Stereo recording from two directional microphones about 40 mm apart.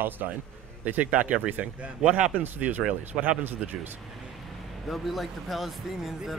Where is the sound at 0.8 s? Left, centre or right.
Right.